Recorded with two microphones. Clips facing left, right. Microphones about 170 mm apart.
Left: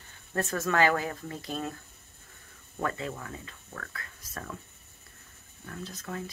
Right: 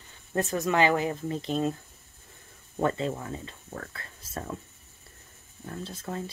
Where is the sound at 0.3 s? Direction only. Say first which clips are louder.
Right 3 dB; 20° right (ahead or behind).